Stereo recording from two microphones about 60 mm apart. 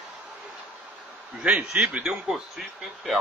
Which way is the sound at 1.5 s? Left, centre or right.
Right.